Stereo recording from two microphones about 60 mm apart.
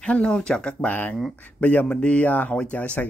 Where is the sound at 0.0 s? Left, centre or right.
Centre.